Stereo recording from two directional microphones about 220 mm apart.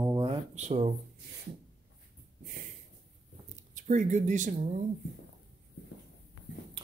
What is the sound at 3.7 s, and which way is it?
Speech, 35° right (ahead or behind).